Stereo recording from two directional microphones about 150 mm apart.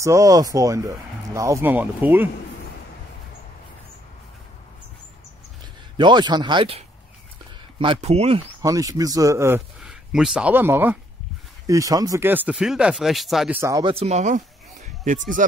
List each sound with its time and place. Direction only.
0.0 s speech: 20° right (ahead or behind)
5.9 s speech: 30° right (ahead or behind)
8.0 s speech: 45° right (ahead or behind)
8.6 s speech: 25° right (ahead or behind)
9.8 s speech: 5° right (ahead or behind)
13.6 s speech: 20° right (ahead or behind)
13.8 s speech: 45° right (ahead or behind)
15.0 s speech: 60° right (ahead or behind)